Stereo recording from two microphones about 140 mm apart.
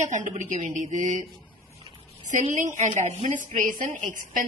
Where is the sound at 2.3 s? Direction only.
60° right (ahead or behind).